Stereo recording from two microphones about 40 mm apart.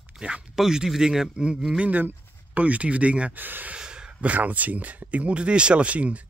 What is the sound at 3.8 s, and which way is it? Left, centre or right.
Gasp, right.